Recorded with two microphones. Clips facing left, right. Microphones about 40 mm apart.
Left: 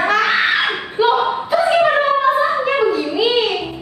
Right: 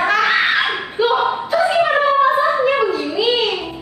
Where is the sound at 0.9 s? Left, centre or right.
Centre.